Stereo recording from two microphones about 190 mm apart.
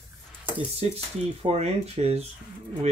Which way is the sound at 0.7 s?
35° right (ahead or behind).